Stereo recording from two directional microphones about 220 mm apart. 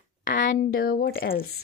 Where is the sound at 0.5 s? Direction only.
40° left (ahead or behind).